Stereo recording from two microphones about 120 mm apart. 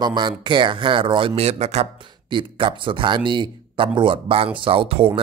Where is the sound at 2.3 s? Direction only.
45° right (ahead or behind).